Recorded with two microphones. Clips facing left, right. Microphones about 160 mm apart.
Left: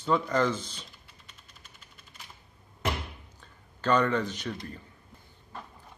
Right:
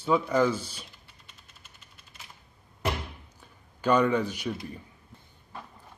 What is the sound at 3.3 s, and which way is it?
Speech, 10° right (ahead or behind).